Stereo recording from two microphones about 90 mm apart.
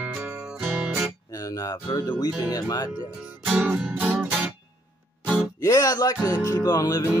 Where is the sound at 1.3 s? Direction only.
40° left (ahead or behind).